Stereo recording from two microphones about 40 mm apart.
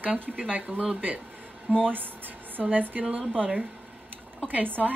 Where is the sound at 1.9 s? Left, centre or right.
Right.